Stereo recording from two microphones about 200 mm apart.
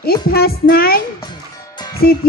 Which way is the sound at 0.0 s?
50° left (ahead or behind).